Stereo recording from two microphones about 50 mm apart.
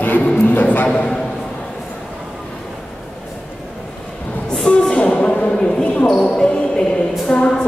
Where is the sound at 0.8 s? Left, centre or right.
Centre.